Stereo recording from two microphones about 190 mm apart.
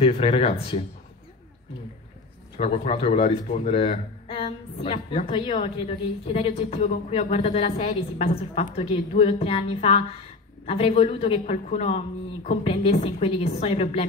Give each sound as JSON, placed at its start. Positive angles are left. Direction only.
{"t": 0.0, "sound": "a man's voice", "side_deg": 30}
{"t": 2.5, "sound": "a man's voice", "side_deg": 30}